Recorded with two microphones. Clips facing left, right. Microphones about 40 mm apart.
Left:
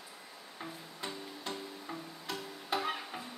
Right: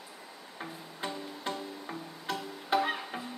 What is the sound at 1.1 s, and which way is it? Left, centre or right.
Music, right.